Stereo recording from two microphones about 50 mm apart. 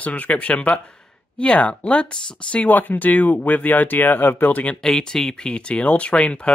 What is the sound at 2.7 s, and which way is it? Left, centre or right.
Speech, left.